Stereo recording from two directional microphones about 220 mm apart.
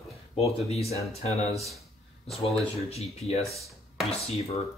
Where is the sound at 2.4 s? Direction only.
30° left (ahead or behind).